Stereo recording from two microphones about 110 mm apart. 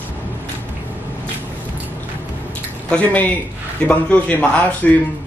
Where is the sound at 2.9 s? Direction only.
15° left (ahead or behind).